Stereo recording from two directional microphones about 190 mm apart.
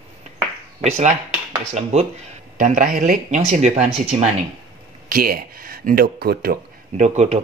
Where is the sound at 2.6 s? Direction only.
45° right (ahead or behind).